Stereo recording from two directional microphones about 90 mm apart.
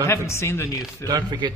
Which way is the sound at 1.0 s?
50° right (ahead or behind).